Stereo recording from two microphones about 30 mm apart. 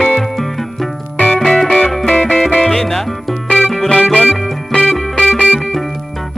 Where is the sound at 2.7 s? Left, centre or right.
Centre.